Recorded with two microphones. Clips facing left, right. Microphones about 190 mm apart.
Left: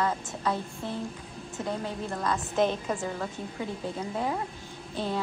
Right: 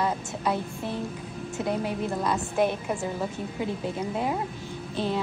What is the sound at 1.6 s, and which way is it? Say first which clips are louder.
A woman's voice: right 5 dB; 10° right (ahead or behind).